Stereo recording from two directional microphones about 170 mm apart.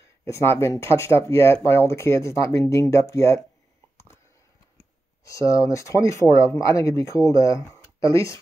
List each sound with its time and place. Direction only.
0.2 s speech: 15° left (ahead or behind)
5.2 s speech: 20° left (ahead or behind)